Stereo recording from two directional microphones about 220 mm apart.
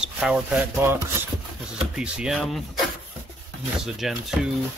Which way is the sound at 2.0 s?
Centre (ahead or behind).